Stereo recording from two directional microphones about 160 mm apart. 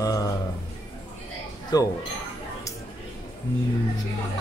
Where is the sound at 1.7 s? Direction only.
25° left (ahead or behind).